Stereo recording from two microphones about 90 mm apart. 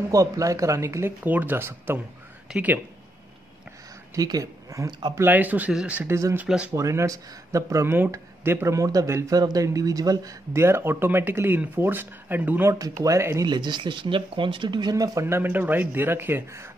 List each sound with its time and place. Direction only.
0.1 s speech: 40° right (ahead or behind)
1.2 s speech: 20° right (ahead or behind)
4.1 s speech: 40° right (ahead or behind)
5.1 s speech: 20° right (ahead or behind)
6.0 s speech: 35° right (ahead or behind)
6.3 s speech: 10° right (ahead or behind)
6.7 s speech: 35° right (ahead or behind)
10.5 s speech: 30° right (ahead or behind)
12.6 s speech: 40° right (ahead or behind)
13.5 s speech: 60° right (ahead or behind)
15.2 s speech: 25° right (ahead or behind)